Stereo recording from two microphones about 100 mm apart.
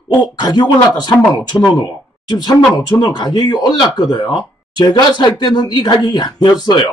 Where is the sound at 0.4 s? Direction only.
45° left (ahead or behind).